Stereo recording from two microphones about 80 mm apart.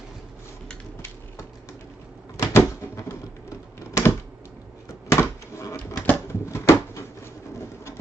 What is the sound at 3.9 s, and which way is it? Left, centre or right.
Typewriter, left.